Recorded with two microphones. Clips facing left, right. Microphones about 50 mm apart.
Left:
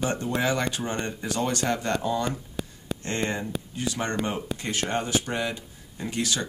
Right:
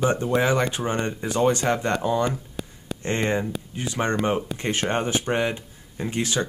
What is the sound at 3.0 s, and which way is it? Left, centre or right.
Speech, right.